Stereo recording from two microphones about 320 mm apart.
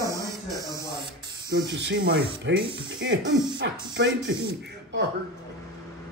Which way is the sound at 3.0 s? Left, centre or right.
Right.